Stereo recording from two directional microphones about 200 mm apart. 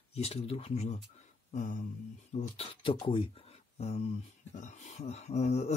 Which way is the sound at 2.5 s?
30° left (ahead or behind).